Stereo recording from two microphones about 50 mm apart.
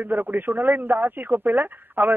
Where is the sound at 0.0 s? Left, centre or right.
Right.